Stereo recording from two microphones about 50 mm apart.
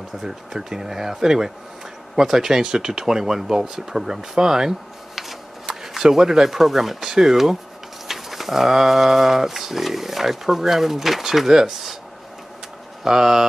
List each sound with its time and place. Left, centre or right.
0.2 s speech: centre
13.0 s speech: centre